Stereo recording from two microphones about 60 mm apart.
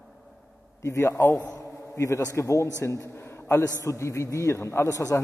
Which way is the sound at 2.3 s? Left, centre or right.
Left.